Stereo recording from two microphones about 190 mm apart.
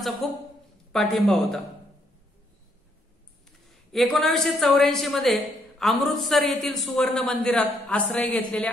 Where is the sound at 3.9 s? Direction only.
Centre (ahead or behind).